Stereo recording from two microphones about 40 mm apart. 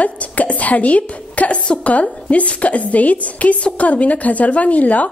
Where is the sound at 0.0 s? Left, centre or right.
Left.